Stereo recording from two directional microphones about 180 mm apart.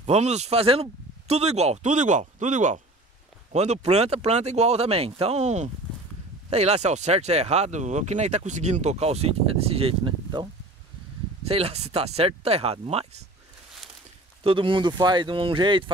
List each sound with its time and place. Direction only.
0.0 s speech: 40° right (ahead or behind)
14.4 s speech: 30° right (ahead or behind)